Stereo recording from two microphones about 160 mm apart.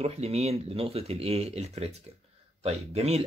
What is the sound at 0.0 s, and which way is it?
Speech, 40° right (ahead or behind).